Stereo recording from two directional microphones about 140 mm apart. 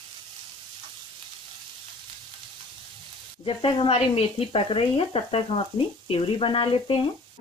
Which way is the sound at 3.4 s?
40° left (ahead or behind).